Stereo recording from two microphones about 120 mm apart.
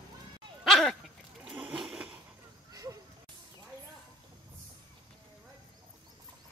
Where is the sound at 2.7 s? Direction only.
30° right (ahead or behind).